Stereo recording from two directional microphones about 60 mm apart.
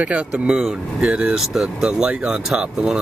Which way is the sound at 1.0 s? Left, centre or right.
Centre.